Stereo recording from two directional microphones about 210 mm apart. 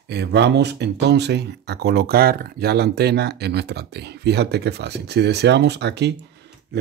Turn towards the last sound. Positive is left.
turn(degrees=-55)  # may be behind; listen again after turning